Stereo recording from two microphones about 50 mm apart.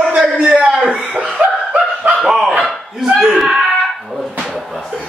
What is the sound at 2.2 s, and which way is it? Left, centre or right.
Speech, centre.